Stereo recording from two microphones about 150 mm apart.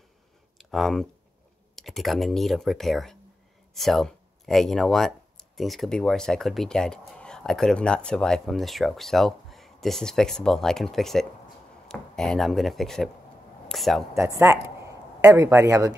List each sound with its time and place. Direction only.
0.6 s a sound: centre (ahead or behind)
1.8 s speech: centre (ahead or behind)
14.1 s a man's voice: 20° right (ahead or behind)